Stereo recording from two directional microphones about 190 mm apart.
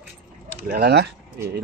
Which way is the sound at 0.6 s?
55° right (ahead or behind).